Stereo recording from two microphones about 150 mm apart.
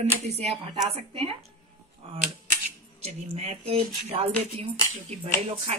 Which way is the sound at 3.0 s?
45° right (ahead or behind).